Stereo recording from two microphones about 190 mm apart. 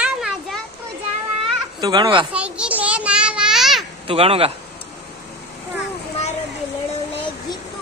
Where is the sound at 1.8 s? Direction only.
20° right (ahead or behind).